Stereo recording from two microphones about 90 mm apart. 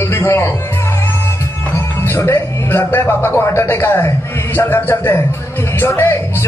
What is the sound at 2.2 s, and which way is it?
A man's voice, 30° left (ahead or behind).